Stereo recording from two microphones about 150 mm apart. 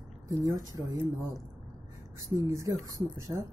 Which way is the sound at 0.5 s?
20° right (ahead or behind).